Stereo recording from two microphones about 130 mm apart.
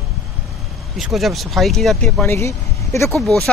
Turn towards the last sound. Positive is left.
turn(degrees=0)  # may be behind; listen again after turning